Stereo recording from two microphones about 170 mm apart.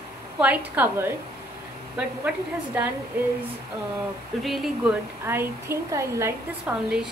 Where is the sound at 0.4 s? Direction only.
10° right (ahead or behind).